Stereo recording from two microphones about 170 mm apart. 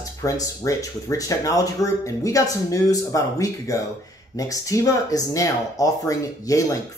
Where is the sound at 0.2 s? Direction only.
20° left (ahead or behind).